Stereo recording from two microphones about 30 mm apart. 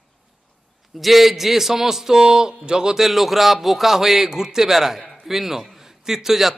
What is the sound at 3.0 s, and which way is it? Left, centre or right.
A man's voice, centre.